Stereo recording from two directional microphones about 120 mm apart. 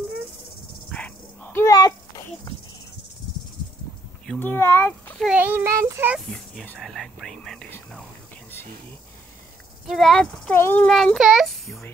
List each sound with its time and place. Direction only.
0.8 s dog: 10° left (ahead or behind)
1.7 s a sound: 30° left (ahead or behind)
4.4 s speech: 20° left (ahead or behind)
5.2 s a child's voice: 15° right (ahead or behind)
6.1 s a child's voice: 5° left (ahead or behind)
9.8 s a child's voice: centre (ahead or behind)
10.5 s speech: 20° left (ahead or behind)
10.9 s a child's voice: centre (ahead or behind)